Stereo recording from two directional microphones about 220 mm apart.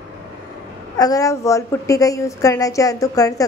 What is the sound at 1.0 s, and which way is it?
A woman's voice, 15° left (ahead or behind).